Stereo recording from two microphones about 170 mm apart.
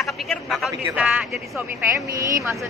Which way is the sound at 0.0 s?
Centre (ahead or behind).